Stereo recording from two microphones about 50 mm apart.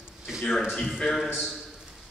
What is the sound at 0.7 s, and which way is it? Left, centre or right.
Speech, centre.